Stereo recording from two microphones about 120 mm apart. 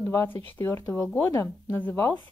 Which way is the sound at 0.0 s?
25° left (ahead or behind).